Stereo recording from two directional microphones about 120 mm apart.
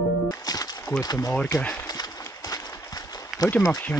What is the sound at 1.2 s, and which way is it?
Speech, 10° left (ahead or behind).